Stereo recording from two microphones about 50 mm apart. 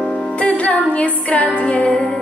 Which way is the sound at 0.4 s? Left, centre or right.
Left.